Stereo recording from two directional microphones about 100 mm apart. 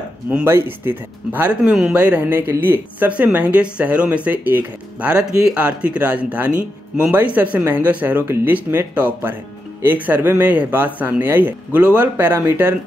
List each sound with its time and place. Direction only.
0.5 s speech: 25° right (ahead or behind)